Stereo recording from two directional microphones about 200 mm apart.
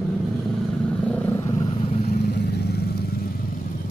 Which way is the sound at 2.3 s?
55° left (ahead or behind).